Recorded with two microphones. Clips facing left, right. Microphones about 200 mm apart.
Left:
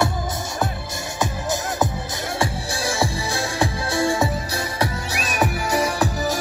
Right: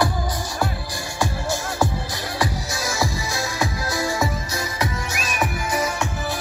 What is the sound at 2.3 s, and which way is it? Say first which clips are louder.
Music: left 1 dB; 30° left (ahead or behind).